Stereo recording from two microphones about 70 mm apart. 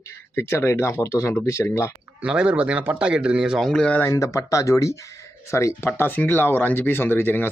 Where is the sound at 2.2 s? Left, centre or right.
Centre.